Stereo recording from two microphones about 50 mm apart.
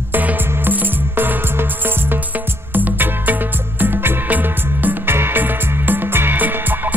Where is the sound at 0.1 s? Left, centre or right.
Right.